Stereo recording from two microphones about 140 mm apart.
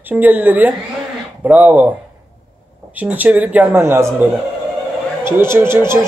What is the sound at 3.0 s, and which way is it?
Speech, 10° right (ahead or behind).